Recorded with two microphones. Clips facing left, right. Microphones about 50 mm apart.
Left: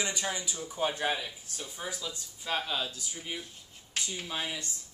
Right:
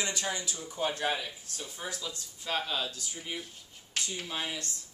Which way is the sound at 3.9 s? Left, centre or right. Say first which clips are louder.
Even; centre.